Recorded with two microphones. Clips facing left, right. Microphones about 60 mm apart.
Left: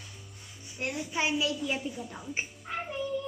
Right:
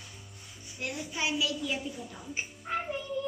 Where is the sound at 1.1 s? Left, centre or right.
Left.